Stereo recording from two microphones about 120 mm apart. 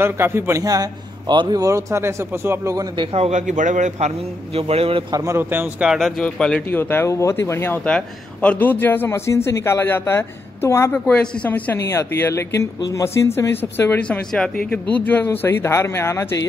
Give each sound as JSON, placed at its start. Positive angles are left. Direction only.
{"t": 0.0, "sound": "a man's voice", "side_deg": -20}
{"t": 1.6, "sound": "a man's voice", "side_deg": -25}
{"t": 3.0, "sound": "a man's voice", "side_deg": -55}
{"t": 4.6, "sound": "a man's voice", "side_deg": -55}
{"t": 5.1, "sound": "speech", "side_deg": -25}
{"t": 5.9, "sound": "speech", "side_deg": -5}
{"t": 6.8, "sound": "speech", "side_deg": 20}
{"t": 11.1, "sound": "speech", "side_deg": 10}
{"t": 11.8, "sound": "speech", "side_deg": 25}